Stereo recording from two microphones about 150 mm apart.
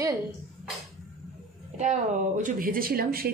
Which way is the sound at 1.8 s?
50° right (ahead or behind).